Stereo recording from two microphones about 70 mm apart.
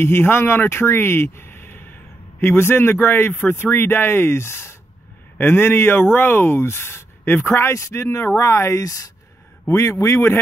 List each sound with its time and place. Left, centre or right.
0.0 s speech: left